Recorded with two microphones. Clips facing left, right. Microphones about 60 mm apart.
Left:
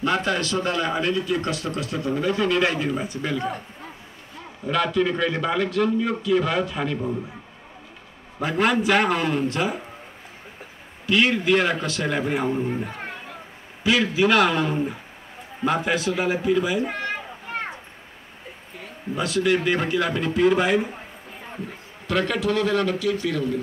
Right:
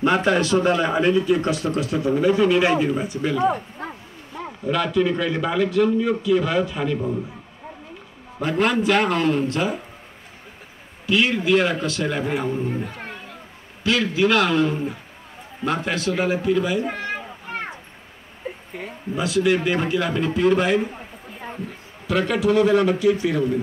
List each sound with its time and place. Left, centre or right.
0.0 s speech: right; by 3.4 s centre
4.6 s a man's voice: centre
8.4 s a man's voice: centre
11.1 s a man's voice: centre
19.1 s a man's voice: centre
22.0 s speech: centre